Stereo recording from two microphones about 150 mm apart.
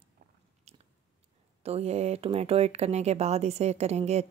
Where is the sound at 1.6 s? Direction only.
45° right (ahead or behind).